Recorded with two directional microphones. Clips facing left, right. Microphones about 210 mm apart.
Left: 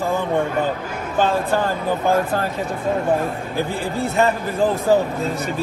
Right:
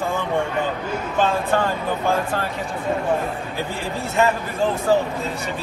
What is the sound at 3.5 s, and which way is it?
Speech, centre (ahead or behind).